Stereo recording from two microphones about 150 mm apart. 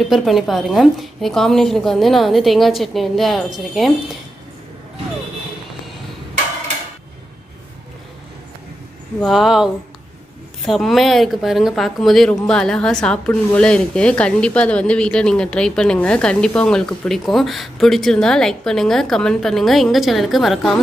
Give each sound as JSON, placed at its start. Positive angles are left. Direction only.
{"t": 0.1, "sound": "speech", "side_deg": 0}
{"t": 9.2, "sound": "speech", "side_deg": 0}